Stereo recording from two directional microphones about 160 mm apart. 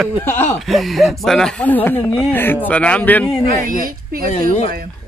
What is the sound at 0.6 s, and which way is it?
A man's voice, centre (ahead or behind).